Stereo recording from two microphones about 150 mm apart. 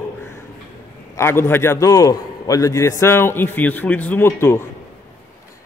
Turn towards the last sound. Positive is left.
turn(degrees=15)  # may be behind; listen again after turning